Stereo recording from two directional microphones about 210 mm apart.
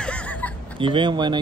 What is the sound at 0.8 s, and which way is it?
Speech, 20° right (ahead or behind).